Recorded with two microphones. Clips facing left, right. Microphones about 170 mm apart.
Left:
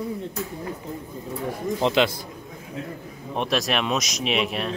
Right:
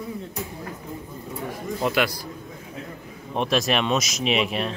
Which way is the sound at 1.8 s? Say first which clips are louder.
Left 2 dB; 25° left (ahead or behind).